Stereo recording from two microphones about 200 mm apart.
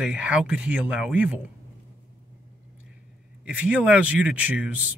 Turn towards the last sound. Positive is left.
turn(degrees=-5)  # may be behind; listen again after turning